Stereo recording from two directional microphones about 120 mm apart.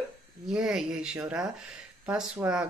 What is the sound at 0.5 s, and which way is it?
Speech, 5° right (ahead or behind).